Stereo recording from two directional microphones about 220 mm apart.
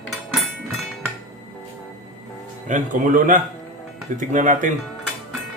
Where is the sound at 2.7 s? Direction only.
35° right (ahead or behind).